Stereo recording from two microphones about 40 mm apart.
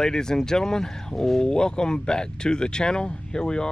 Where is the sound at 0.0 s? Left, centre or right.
Centre.